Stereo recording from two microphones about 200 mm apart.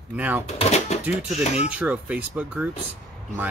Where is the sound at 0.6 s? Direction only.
35° left (ahead or behind).